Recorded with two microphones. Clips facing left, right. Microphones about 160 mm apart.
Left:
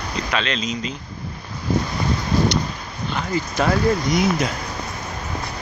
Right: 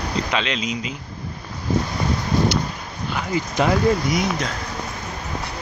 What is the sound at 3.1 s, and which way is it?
Speech, 15° right (ahead or behind).